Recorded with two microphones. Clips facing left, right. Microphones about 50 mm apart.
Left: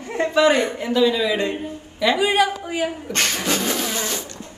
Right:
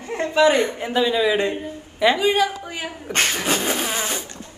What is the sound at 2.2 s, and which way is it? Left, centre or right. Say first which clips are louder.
Speech: left 1 dB; centre.